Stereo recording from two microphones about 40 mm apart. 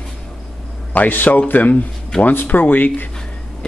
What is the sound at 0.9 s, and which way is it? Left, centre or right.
Speech, left.